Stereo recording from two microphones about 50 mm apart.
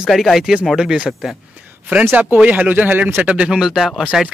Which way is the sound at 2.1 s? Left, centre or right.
Right.